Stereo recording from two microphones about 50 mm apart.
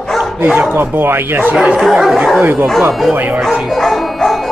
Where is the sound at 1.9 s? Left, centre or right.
Centre.